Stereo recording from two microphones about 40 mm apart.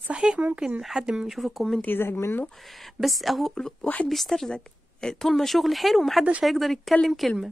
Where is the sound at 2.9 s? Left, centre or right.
Centre.